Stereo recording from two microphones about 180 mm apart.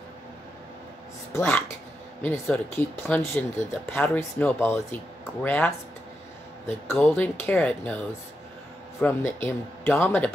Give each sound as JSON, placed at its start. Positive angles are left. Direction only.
{"t": 1.3, "sound": "speech", "side_deg": 10}
{"t": 7.0, "sound": "speech", "side_deg": 10}
{"t": 9.0, "sound": "speech", "side_deg": 10}